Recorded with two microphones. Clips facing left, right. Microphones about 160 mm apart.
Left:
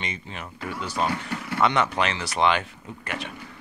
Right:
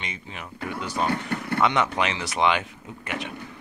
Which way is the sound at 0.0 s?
5° right (ahead or behind).